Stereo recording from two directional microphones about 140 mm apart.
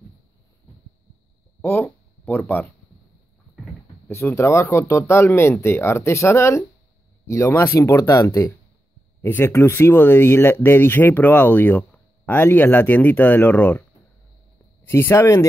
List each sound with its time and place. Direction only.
1.6 s a sound: 15° left (ahead or behind)
4.1 s speech: 20° left (ahead or behind)
14.9 s speech: 15° left (ahead or behind)